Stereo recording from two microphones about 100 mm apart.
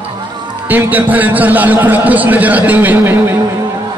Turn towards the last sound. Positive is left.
turn(degrees=-20)  # may be behind; listen again after turning